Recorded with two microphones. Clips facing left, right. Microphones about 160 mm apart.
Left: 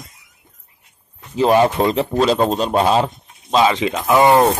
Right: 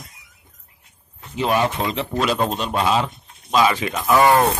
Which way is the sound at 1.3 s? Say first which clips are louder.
Left 6 dB; 35° left (ahead or behind).